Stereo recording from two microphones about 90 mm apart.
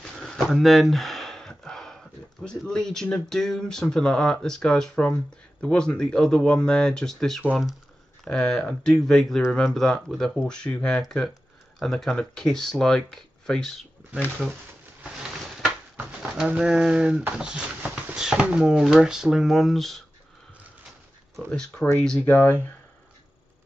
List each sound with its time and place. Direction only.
0.1 s a sound: 5° left (ahead or behind)
2.6 s speech: 5° left (ahead or behind)
15.6 s a sound: 5° right (ahead or behind)
16.4 s speech: 10° right (ahead or behind)
21.5 s speech: 5° left (ahead or behind)
22.2 s speech: 20° left (ahead or behind)